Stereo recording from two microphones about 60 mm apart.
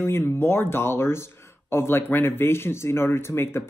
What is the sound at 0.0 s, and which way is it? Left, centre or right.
Speech, left.